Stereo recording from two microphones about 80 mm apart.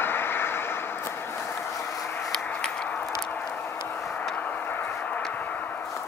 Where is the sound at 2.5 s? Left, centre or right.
Centre.